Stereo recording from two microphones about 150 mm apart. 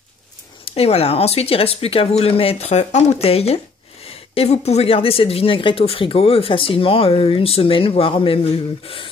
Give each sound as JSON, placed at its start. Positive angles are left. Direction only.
{"t": 0.7, "sound": "speech", "side_deg": 45}